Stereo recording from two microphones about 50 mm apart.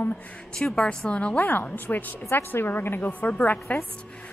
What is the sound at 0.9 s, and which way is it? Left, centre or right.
Speech, centre.